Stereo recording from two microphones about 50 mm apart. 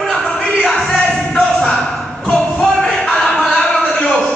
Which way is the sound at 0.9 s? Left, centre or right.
Centre.